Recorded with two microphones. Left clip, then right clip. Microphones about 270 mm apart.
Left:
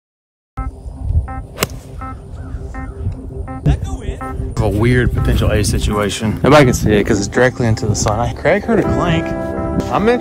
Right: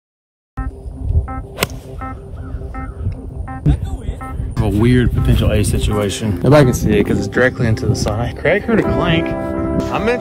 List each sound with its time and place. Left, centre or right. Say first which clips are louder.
1.2 s music: even; centre
3.6 s music: even; left
4.6 s speech: even; centre
9.8 s speech: left 5 dB; left